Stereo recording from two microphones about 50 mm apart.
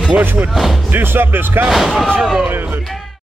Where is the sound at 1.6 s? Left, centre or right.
Centre.